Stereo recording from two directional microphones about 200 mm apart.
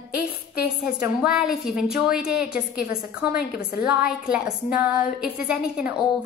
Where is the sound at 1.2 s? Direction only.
5° right (ahead or behind).